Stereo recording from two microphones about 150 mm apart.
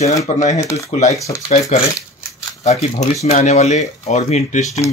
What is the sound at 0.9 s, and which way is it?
Speech, 50° left (ahead or behind).